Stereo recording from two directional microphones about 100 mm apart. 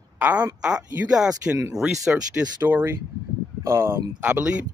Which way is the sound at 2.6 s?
20° right (ahead or behind).